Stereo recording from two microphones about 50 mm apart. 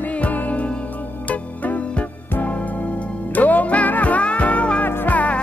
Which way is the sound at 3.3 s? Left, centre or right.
Left.